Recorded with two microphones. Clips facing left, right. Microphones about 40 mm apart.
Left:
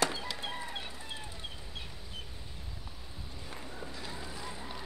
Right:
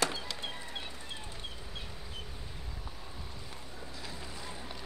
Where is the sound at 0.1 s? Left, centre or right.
Centre.